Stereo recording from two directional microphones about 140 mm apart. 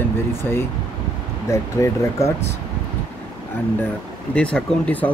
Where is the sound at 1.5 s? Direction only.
20° left (ahead or behind).